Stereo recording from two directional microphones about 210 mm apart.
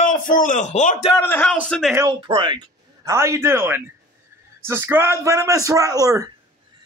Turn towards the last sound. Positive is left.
turn(degrees=-15)  # may be behind; listen again after turning